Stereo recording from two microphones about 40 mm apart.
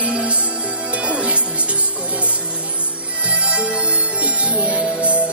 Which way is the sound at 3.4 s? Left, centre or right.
Right.